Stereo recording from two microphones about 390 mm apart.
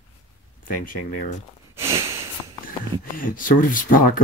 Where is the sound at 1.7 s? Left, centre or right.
Centre.